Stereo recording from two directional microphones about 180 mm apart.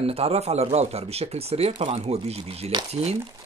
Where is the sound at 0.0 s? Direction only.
35° right (ahead or behind).